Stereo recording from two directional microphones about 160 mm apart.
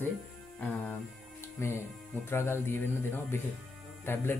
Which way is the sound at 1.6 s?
15° left (ahead or behind).